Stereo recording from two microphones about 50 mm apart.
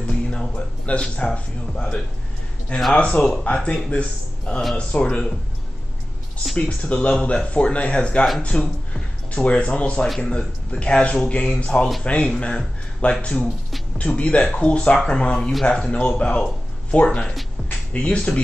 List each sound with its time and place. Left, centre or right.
0.0 s music: left
1.1 s speech: centre
6.5 s speech: left